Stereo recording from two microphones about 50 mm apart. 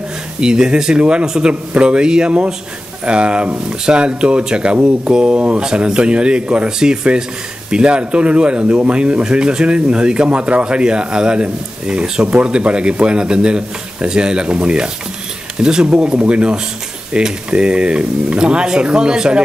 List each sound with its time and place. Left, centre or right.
0.4 s speech: centre